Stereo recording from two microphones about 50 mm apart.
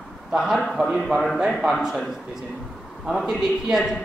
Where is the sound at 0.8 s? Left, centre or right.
Right.